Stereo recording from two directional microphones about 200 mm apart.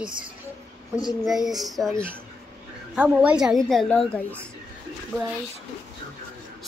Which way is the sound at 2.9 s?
5° right (ahead or behind).